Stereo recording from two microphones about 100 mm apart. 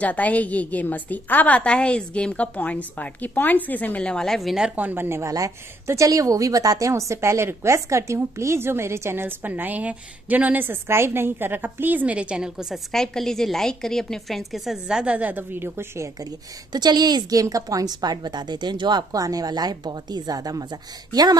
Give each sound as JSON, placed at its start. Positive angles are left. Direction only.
{"t": 0.0, "sound": "a woman's voice", "side_deg": 15}
{"t": 16.2, "sound": "a woman's voice", "side_deg": -40}